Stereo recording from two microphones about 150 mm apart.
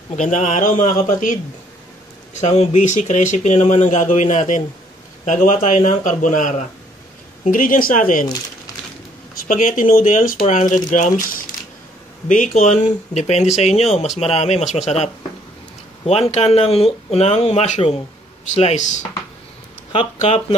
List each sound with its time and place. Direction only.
0.1 s speech: 55° left (ahead or behind)
2.3 s speech: 50° left (ahead or behind)
9.5 s speech: 60° left (ahead or behind)
12.3 s speech: 55° left (ahead or behind)
16.1 s speech: 45° left (ahead or behind)
20.2 s speech: 45° left (ahead or behind)